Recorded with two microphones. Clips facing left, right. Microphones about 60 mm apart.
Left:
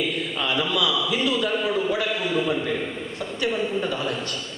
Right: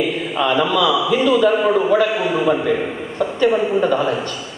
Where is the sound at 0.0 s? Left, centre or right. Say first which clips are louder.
Right 7 dB; centre.